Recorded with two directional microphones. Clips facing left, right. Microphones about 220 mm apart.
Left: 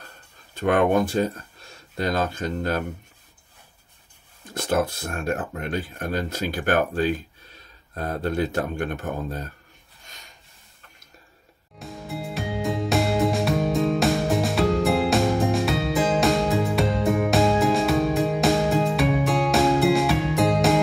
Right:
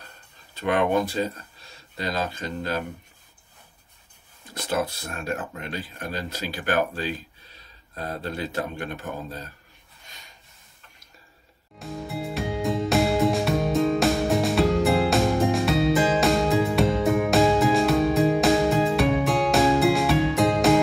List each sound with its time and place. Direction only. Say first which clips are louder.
0.6 s speech: left 3 dB; 50° left (ahead or behind)
4.6 s speech: left 3 dB; 50° left (ahead or behind)
11.8 s music: right 2 dB; centre (ahead or behind)